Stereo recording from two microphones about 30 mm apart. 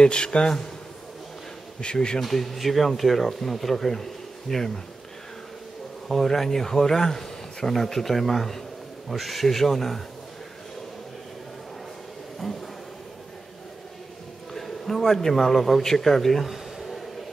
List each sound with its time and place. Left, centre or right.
0.0 s speech: left
2.1 s speech: centre
6.0 s speech: centre
12.4 s speech: centre
14.5 s a man's voice: centre
16.4 s a sound: centre